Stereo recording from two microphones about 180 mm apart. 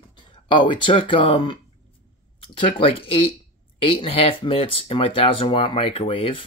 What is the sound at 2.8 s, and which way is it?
Speech, 30° left (ahead or behind).